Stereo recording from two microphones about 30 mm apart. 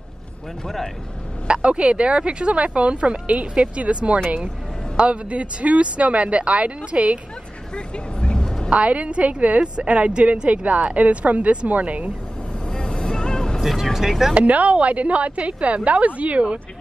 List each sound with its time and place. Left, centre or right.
1.5 s speech: right
7.7 s vehicle: left
8.6 s speech: right
10.5 s speech: right
12.6 s vehicle: left
14.3 s speech: right